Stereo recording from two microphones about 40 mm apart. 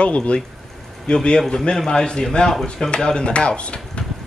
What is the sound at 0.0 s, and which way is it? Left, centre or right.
A man's voice, left.